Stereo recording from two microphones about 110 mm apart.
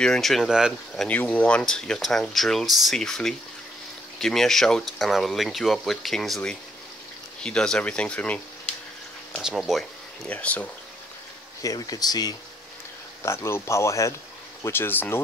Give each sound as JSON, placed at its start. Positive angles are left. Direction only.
{"t": 0.0, "sound": "speech", "side_deg": 5}
{"t": 1.0, "sound": "speech", "side_deg": 15}
{"t": 9.4, "sound": "speech", "side_deg": -5}
{"t": 10.2, "sound": "speech", "side_deg": 15}
{"t": 11.6, "sound": "speech", "side_deg": 35}
{"t": 13.2, "sound": "speech", "side_deg": 25}